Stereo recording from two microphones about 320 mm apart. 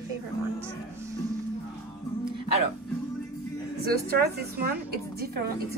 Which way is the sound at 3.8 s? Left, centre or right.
Right.